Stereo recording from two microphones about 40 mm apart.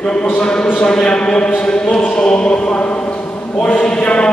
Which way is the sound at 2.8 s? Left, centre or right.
Left.